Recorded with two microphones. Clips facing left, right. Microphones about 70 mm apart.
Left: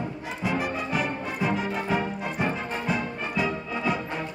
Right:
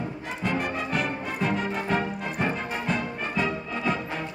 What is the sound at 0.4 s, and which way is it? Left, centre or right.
Music, centre.